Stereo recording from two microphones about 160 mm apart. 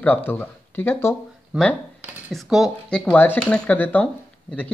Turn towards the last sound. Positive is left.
turn(degrees=10)  # may be behind; listen again after turning